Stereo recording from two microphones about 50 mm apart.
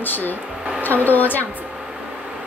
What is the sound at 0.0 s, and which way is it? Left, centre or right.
A woman's voice, left.